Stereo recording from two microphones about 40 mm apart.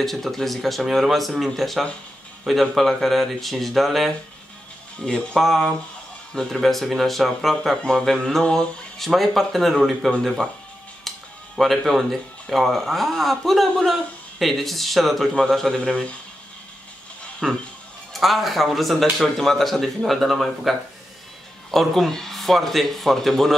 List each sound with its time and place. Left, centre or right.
0.0 s speech: centre
5.0 s a man's voice: centre
5.4 s a man's voice: centre
17.4 s a man's voice: centre